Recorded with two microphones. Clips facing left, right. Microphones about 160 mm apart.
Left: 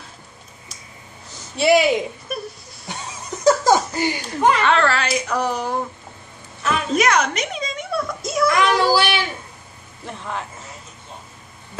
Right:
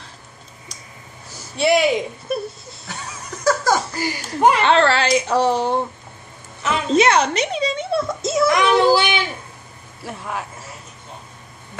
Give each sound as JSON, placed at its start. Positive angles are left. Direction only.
{"t": 1.6, "sound": "speech", "side_deg": 0}
{"t": 2.3, "sound": "a sound", "side_deg": -25}
{"t": 2.9, "sound": "laughter", "side_deg": 20}
{"t": 3.9, "sound": "speech", "side_deg": 20}
{"t": 4.6, "sound": "a sound", "side_deg": -30}
{"t": 10.0, "sound": "a man's voice", "side_deg": -10}